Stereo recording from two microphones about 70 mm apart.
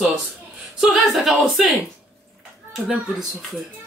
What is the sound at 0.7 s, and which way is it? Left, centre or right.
Speech, centre.